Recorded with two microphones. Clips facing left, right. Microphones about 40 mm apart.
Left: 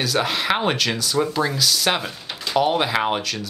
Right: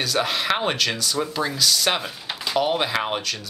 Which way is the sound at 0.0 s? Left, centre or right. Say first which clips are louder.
Left 1 dB; centre.